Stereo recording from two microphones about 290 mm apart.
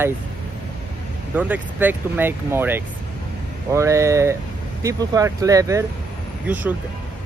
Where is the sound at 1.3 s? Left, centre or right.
Centre.